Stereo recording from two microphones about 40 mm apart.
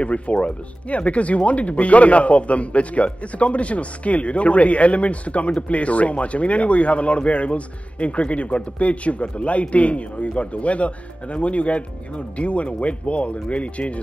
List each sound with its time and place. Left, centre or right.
0.0 s speech: left